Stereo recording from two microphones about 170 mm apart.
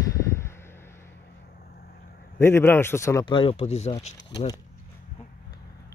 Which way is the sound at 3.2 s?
30° left (ahead or behind).